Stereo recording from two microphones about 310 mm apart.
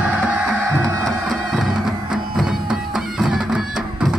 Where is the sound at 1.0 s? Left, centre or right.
Centre.